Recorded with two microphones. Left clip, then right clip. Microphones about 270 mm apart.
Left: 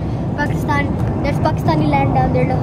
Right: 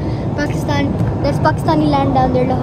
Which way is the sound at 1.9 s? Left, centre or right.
Right.